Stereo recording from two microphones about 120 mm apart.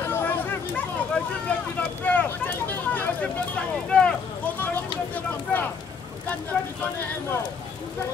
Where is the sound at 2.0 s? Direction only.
10° left (ahead or behind).